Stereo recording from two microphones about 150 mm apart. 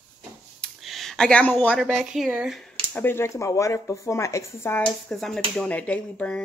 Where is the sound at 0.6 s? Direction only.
Centre (ahead or behind).